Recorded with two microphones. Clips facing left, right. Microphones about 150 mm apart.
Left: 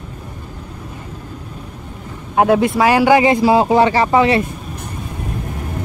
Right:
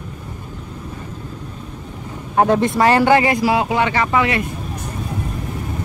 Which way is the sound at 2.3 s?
5° left (ahead or behind).